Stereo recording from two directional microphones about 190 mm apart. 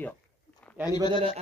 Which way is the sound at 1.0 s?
30° right (ahead or behind).